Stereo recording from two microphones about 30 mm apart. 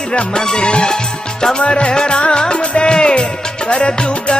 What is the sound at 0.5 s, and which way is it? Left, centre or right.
Music, left.